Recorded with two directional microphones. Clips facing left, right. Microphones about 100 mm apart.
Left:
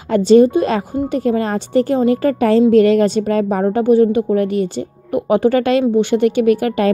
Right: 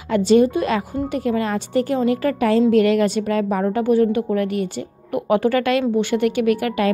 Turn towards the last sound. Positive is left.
turn(degrees=30)  # may be behind; listen again after turning